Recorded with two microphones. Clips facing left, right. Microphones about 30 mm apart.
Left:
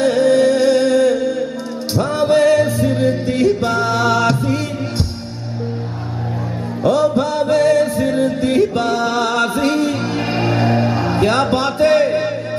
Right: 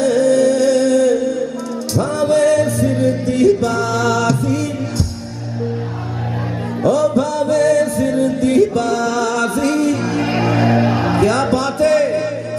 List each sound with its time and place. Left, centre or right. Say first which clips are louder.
0.0 s music: even; left
6.8 s music: even; left; by 11.1 s centre
11.1 s music: left 1 dB; left
11.5 s a sound: left 1 dB; left